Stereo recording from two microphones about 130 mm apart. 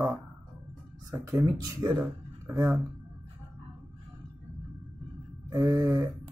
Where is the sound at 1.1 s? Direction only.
25° right (ahead or behind).